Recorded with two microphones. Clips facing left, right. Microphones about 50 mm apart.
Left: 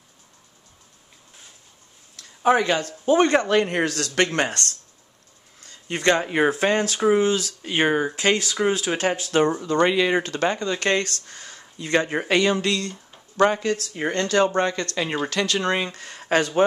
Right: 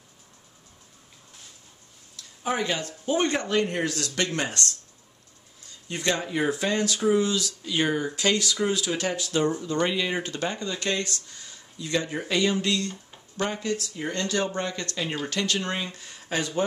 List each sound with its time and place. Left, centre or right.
2.4 s speech: left
9.5 s speech: left